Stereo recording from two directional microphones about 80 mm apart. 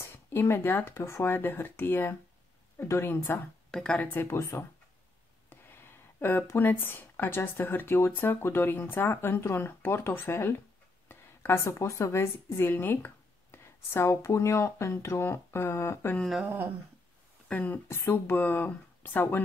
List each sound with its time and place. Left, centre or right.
0.0 s speech: left
3.7 s speech: centre
4.0 s a woman's voice: left
16.4 s humming: right
17.5 s speech: left
17.8 s speech: left